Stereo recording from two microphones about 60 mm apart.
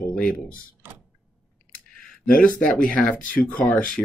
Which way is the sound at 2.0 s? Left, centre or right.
Centre.